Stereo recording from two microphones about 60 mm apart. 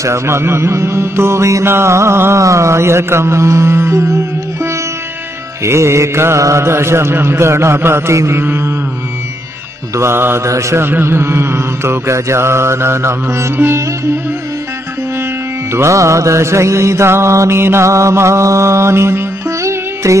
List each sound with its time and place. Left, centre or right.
0.0 s music: right
5.6 s music: right
9.9 s music: right
10.8 s music: right
15.7 s music: right